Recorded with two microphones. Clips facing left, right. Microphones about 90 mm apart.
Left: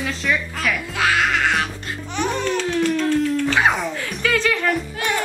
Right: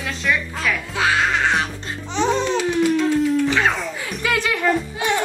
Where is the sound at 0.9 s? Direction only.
25° right (ahead or behind); by 4.2 s 5° right (ahead or behind).